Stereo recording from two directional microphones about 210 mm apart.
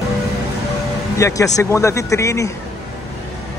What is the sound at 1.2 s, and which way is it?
Speech, 15° left (ahead or behind).